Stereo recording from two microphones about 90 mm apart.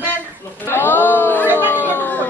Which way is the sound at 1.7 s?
20° left (ahead or behind).